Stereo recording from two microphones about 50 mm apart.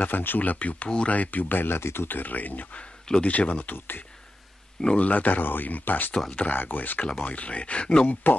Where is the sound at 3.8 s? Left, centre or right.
Left.